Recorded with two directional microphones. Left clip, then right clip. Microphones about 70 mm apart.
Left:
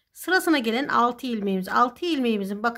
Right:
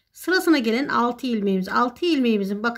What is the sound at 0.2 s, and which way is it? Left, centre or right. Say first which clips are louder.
Speech: right 2 dB; left.